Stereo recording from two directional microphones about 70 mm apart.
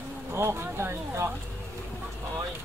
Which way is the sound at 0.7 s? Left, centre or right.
Right.